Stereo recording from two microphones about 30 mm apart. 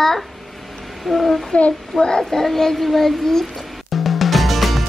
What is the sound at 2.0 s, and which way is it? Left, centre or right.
Child singing, left.